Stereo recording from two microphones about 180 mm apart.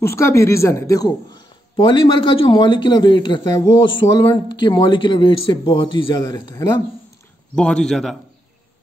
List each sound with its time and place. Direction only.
0.0 s a man's voice: 15° left (ahead or behind)
7.5 s a man's voice: 5° left (ahead or behind)